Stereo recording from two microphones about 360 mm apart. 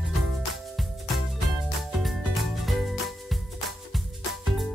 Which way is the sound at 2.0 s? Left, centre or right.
Centre.